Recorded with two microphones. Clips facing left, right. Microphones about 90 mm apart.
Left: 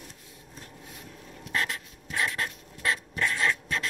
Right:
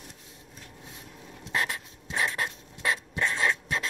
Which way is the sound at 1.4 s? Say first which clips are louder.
Right 1 dB; 20° right (ahead or behind).